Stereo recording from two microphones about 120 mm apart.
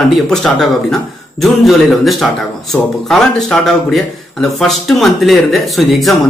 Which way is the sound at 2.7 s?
15° left (ahead or behind).